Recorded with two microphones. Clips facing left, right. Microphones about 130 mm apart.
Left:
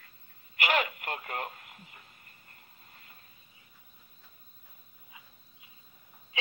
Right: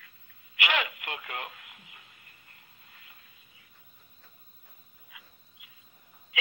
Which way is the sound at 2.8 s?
40° left (ahead or behind).